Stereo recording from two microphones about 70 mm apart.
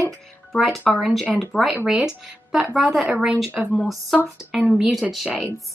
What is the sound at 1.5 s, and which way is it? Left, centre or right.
Speech, left.